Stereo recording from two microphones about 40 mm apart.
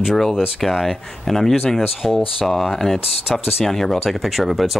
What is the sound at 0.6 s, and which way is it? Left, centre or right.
Speech, centre.